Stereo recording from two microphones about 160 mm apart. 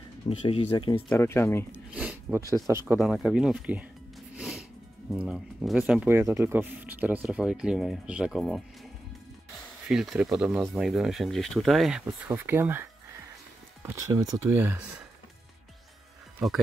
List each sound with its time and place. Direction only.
0.3 s speech: 35° left (ahead or behind)
1.1 s speech: 15° left (ahead or behind)
1.7 s a sound: 10° right (ahead or behind)
2.7 s speech: 15° right (ahead or behind)
3.0 s speech: centre (ahead or behind)
4.4 s music: centre (ahead or behind)
5.2 s speech: 5° right (ahead or behind)
6.1 s speech: 15° right (ahead or behind); by 8.6 s centre (ahead or behind)
9.8 s speech: 5° right (ahead or behind)
13.8 s speech: 25° right (ahead or behind)
16.4 s speech: centre (ahead or behind)